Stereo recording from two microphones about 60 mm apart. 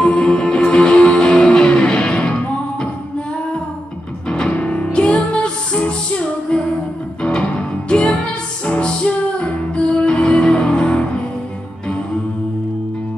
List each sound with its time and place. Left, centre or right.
0.0 s music: centre
4.3 s music: centre